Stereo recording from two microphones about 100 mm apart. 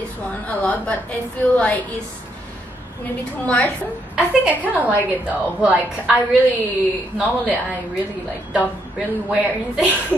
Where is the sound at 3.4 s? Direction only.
15° left (ahead or behind).